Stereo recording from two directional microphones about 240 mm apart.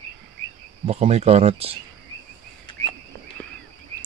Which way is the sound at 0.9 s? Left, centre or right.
Right.